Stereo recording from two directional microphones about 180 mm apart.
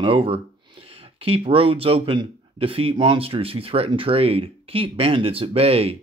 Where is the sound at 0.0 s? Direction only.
30° right (ahead or behind).